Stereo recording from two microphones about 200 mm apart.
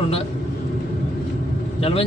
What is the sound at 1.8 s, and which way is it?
Speech, 30° left (ahead or behind).